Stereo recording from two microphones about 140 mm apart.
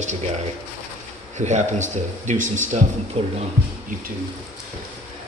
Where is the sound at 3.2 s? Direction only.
50° right (ahead or behind).